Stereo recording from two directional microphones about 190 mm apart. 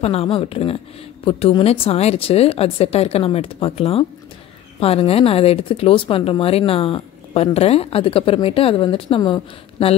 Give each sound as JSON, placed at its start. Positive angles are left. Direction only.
{"t": 0.0, "sound": "speech", "side_deg": 30}